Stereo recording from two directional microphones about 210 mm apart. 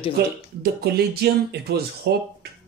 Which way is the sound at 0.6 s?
50° right (ahead or behind).